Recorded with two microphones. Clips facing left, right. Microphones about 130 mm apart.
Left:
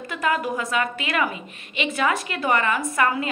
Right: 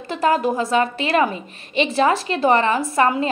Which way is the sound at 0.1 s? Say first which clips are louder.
Right 6 dB; 30° right (ahead or behind).